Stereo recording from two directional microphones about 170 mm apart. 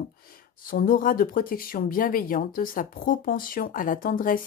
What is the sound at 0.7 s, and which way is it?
Speech, 55° left (ahead or behind).